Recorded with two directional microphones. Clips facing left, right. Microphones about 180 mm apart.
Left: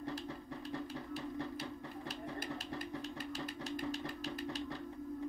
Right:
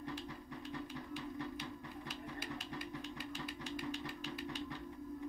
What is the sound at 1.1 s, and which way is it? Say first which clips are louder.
Music: left 2 dB; 35° left (ahead or behind).